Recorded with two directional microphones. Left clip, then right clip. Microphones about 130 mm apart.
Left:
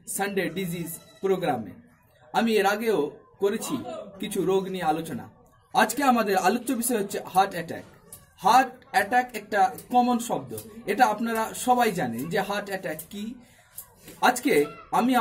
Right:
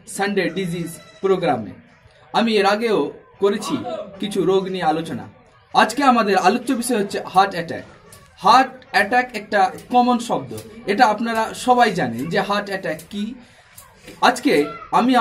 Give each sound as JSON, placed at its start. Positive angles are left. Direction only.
{"t": 0.1, "sound": "speech", "side_deg": 15}